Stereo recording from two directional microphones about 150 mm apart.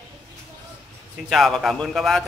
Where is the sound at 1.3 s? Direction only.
Centre (ahead or behind).